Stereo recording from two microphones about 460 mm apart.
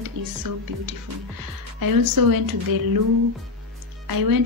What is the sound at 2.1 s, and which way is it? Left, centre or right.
Speech, right.